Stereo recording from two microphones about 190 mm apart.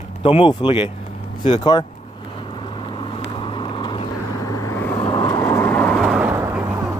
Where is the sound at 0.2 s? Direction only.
30° left (ahead or behind).